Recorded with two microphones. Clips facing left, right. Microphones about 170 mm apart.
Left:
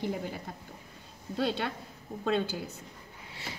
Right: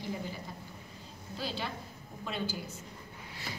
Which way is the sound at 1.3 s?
65° left (ahead or behind).